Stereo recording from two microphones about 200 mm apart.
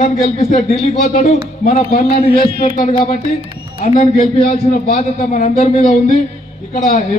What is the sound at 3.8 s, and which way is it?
A man's voice, 30° left (ahead or behind).